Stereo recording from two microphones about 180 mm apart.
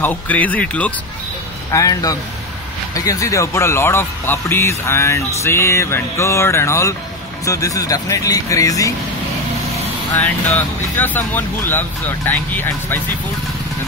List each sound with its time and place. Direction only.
0.0 s speech: 10° left (ahead or behind)
1.7 s speech: 20° left (ahead or behind)
10.1 s speech: 10° left (ahead or behind)